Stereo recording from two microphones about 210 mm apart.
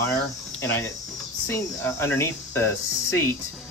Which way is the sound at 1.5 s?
10° left (ahead or behind).